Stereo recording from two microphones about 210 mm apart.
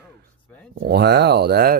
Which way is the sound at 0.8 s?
50° right (ahead or behind).